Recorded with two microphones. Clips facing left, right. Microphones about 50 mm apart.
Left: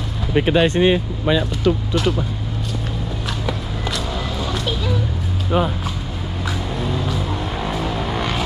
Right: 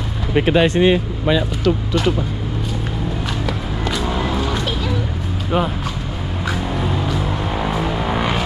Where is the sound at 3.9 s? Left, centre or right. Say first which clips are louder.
Right 6 dB; right.